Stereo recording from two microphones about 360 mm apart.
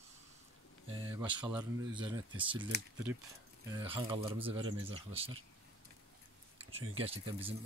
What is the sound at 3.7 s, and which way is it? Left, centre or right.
Speech, centre.